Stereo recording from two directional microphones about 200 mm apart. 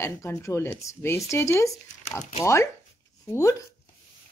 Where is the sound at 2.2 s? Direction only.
35° left (ahead or behind).